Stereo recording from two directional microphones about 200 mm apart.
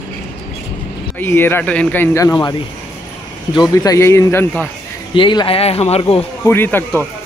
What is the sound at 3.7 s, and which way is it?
Speech, 15° left (ahead or behind).